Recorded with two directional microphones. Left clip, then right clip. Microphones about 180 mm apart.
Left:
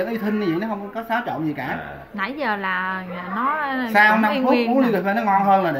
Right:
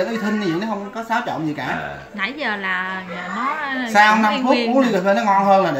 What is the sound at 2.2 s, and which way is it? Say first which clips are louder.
A woman's voice: even; 45° left (ahead or behind).